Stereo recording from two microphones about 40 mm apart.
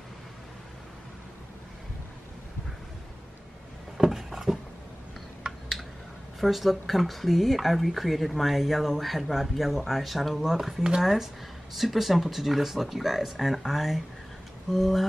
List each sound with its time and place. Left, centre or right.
4.0 s a sound: centre
5.4 s typing: centre
6.4 s speech: centre